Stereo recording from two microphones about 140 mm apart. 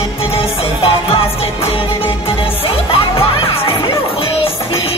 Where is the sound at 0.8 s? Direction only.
40° left (ahead or behind).